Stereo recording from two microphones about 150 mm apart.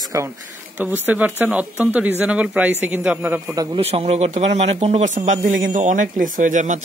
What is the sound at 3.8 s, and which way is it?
Speech, 40° right (ahead or behind).